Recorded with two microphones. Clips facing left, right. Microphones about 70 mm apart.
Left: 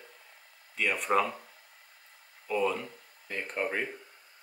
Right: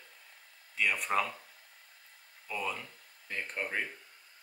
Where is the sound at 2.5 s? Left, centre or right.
Centre.